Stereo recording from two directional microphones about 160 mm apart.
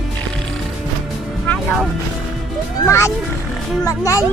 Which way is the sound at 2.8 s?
15° left (ahead or behind).